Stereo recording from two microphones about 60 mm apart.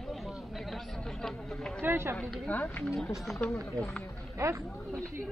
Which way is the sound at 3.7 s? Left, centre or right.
Centre.